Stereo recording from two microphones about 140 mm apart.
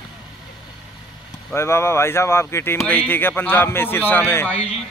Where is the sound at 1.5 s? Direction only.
20° left (ahead or behind).